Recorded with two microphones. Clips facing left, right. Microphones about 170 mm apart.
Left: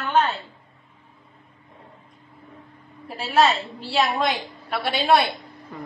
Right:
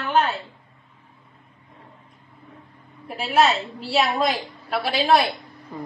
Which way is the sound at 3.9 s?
5° right (ahead or behind).